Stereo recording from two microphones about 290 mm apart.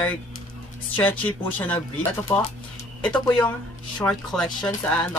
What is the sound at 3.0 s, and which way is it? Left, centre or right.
Speech, centre.